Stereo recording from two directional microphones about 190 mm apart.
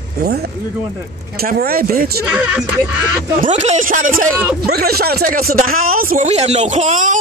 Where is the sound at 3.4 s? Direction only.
35° right (ahead or behind).